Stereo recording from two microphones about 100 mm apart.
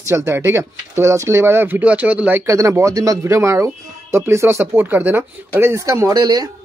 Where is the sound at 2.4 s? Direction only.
30° right (ahead or behind).